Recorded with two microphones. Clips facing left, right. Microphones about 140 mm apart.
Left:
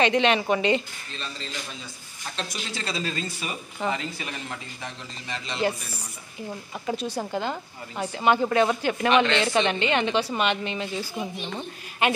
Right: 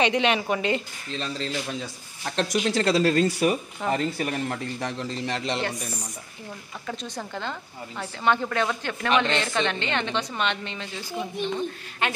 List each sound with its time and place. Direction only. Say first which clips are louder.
0.0 s a woman's voice: left 1 dB; 10° right (ahead or behind)
1.2 s speech: right 6 dB; 75° right (ahead or behind)
3.9 s speech: right 6 dB; 45° right (ahead or behind)
4.8 s speech: right 9 dB; 75° right (ahead or behind)
6.9 s a woman's voice: left 5 dB; 10° left (ahead or behind)